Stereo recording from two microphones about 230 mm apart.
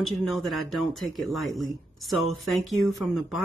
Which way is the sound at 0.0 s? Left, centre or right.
Centre.